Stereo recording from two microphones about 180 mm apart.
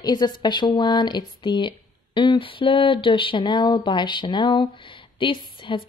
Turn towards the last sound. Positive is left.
turn(degrees=25)  # may be behind; listen again after turning